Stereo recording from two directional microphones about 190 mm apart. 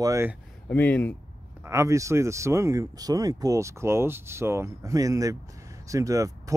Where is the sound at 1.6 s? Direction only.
15° right (ahead or behind).